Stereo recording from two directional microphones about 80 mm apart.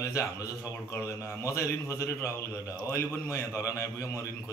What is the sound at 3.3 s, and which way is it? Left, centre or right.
Speech, left.